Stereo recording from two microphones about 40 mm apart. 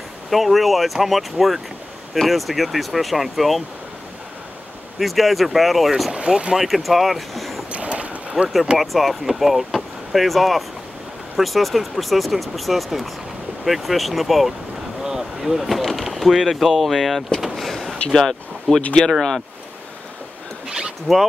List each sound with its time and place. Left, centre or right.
0.3 s speech: centre
4.9 s speech: centre
6.1 s speech: right
6.6 s speech: centre
7.7 s boat: right
8.7 s speech: centre
15.0 s vehicle: centre
15.8 s speech: centre
17.4 s vehicle: centre
18.1 s speech: centre
21.1 s speech: centre